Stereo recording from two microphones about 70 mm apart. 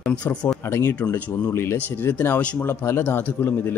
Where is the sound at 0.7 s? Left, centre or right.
Left.